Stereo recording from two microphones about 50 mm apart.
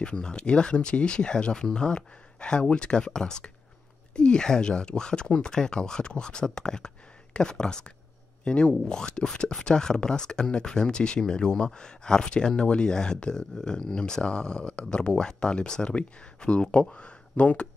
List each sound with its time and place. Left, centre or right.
0.0 s speech: centre